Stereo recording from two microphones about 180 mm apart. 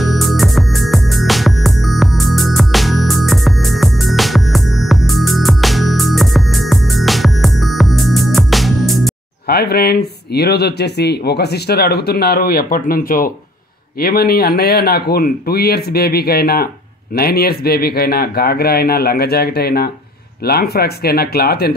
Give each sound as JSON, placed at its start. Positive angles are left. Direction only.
{"t": 0.0, "sound": "music", "side_deg": 0}
{"t": 9.5, "sound": "speech", "side_deg": 60}